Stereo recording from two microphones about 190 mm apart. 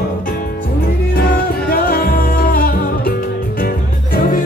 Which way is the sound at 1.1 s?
50° left (ahead or behind).